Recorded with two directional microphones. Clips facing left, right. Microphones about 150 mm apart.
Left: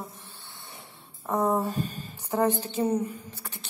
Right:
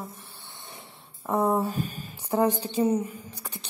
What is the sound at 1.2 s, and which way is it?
A woman's voice, 10° right (ahead or behind).